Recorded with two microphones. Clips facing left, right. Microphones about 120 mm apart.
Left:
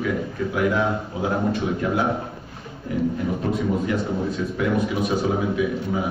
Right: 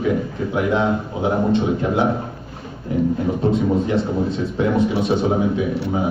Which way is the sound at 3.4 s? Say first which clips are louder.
Right 5 dB; 25° right (ahead or behind).